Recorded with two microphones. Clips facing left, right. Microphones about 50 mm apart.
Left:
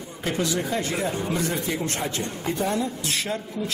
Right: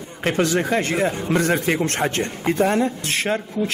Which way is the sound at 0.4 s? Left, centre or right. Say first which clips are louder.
Right 6 dB; right.